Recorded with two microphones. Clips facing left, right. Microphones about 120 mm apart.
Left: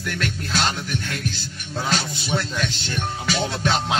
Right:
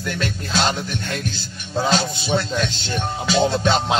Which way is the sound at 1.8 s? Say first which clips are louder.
Right 5 dB; 30° right (ahead or behind).